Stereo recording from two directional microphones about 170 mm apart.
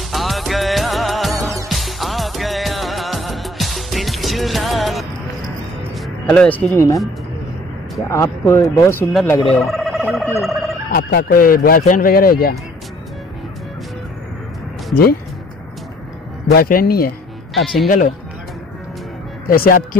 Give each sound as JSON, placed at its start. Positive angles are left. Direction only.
{"t": 0.1, "sound": "music", "side_deg": 0}
{"t": 6.3, "sound": "speech", "side_deg": 10}
{"t": 8.1, "sound": "speech", "side_deg": 15}
{"t": 9.5, "sound": "a sound", "side_deg": 0}
{"t": 10.4, "sound": "fowl", "side_deg": 0}
{"t": 10.9, "sound": "speech", "side_deg": 65}
{"t": 16.5, "sound": "speech", "side_deg": 60}
{"t": 17.8, "sound": "speech", "side_deg": 50}
{"t": 19.4, "sound": "speech", "side_deg": 60}